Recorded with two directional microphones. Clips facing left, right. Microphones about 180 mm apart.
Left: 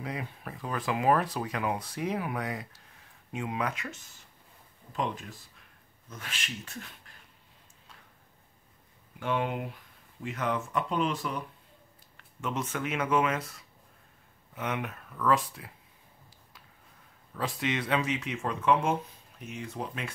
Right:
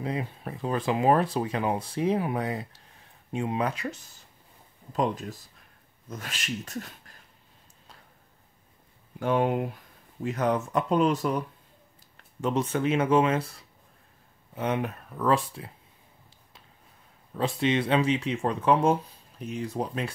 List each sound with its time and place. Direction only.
0.0 s speech: 25° right (ahead or behind)
9.2 s speech: 40° right (ahead or behind)
17.3 s speech: 30° right (ahead or behind)